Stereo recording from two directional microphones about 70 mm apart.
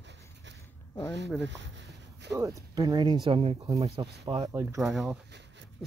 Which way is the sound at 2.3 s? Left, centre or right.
Right.